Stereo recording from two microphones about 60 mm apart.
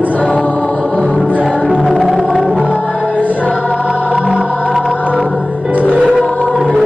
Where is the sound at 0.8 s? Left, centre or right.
Left.